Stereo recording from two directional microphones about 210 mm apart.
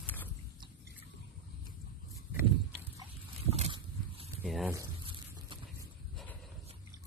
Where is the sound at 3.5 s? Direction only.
25° right (ahead or behind).